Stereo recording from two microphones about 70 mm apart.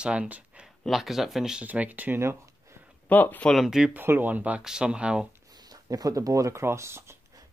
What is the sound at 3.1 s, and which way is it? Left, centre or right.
Speech, left.